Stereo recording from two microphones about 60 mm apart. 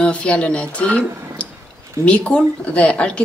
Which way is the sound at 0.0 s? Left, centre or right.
Centre.